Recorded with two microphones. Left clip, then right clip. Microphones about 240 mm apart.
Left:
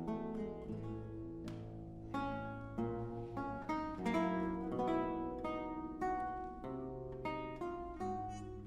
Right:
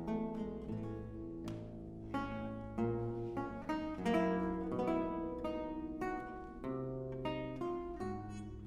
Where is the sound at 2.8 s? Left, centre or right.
Right.